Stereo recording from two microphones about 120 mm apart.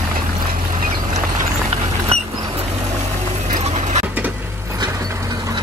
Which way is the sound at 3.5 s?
75° right (ahead or behind).